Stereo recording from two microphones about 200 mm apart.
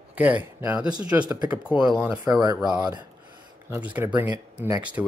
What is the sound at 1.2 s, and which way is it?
Speech, 20° right (ahead or behind).